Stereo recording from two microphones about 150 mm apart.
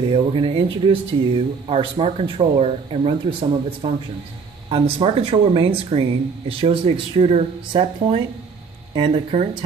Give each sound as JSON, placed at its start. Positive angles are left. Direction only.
{"t": 0.1, "sound": "speech", "side_deg": -35}